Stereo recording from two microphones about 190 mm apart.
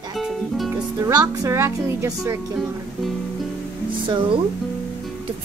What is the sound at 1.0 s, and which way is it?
A woman's voice, 20° right (ahead or behind).